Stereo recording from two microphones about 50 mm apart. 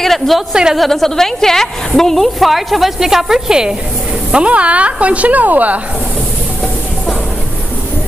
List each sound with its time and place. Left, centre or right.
0.0 s a sound: centre
0.5 s a woman's voice: centre
0.7 s a woman's voice: centre; by 5.8 s right